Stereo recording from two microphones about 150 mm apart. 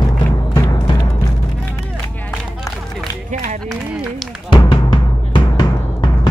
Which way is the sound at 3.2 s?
65° right (ahead or behind).